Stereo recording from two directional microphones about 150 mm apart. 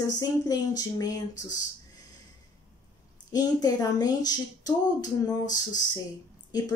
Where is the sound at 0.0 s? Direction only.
25° left (ahead or behind).